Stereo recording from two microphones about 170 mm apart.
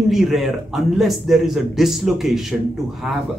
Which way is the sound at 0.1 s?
Centre (ahead or behind).